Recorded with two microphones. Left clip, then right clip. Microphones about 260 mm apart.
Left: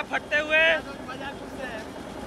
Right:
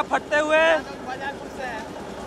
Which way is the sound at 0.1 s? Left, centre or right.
Centre.